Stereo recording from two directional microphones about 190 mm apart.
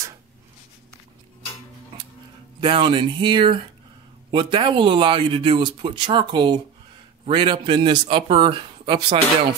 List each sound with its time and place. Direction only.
2.6 s speech: 25° right (ahead or behind)